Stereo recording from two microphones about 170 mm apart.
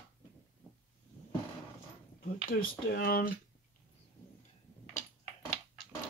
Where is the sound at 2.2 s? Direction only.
60° left (ahead or behind).